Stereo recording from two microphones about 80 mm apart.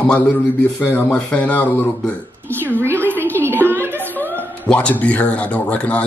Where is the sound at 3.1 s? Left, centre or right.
Left.